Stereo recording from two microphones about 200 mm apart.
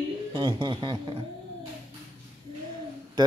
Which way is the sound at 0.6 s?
25° right (ahead or behind).